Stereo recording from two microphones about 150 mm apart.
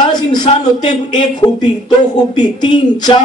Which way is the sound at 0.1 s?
30° left (ahead or behind).